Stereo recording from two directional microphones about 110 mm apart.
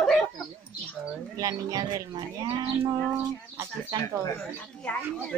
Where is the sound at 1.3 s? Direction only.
35° right (ahead or behind).